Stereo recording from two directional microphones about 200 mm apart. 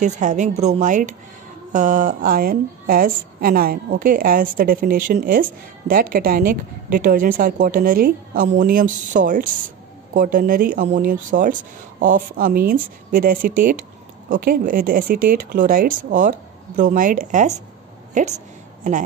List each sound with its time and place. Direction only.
0.0 s a woman's voice: 40° right (ahead or behind)